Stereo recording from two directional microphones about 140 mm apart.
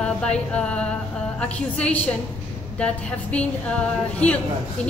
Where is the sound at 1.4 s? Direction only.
10° left (ahead or behind).